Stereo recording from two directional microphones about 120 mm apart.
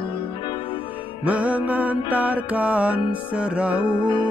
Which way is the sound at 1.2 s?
10° right (ahead or behind).